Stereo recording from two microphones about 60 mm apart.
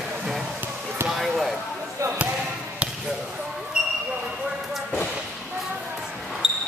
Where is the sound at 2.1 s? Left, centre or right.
Right.